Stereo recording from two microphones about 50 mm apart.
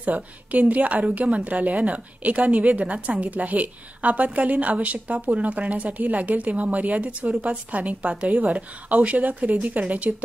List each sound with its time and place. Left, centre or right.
0.0 s a woman's voice: right